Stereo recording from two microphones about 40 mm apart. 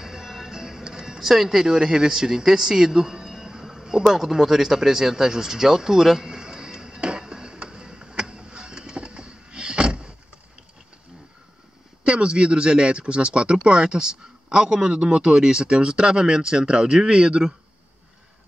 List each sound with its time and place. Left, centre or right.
0.0 s music: centre
1.3 s speech: centre
3.3 s a sound: centre
12.0 s a man's voice: right